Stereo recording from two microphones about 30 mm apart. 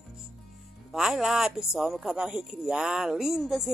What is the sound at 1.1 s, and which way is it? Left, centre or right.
A woman's voice, centre.